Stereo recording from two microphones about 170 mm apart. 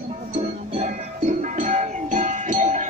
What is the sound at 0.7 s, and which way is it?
Music, 45° right (ahead or behind).